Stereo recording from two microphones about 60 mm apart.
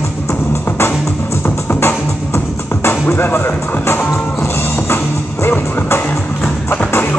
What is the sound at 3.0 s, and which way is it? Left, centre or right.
Speech, left.